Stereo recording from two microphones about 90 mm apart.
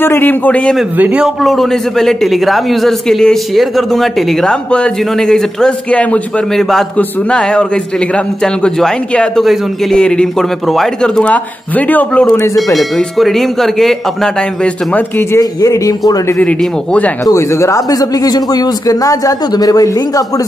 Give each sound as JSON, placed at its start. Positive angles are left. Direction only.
{"t": 0.0, "sound": "a man's voice", "side_deg": 25}
{"t": 0.9, "sound": "a man's voice", "side_deg": -15}
{"t": 1.4, "sound": "a man's voice", "side_deg": 0}
{"t": 12.7, "sound": "a man's voice", "side_deg": 0}
{"t": 15.3, "sound": "a man's voice", "side_deg": 40}
{"t": 16.3, "sound": "a man's voice", "side_deg": 15}
{"t": 17.2, "sound": "speech", "side_deg": 35}